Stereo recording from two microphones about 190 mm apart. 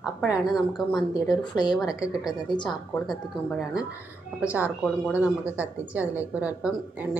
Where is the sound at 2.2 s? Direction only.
20° left (ahead or behind).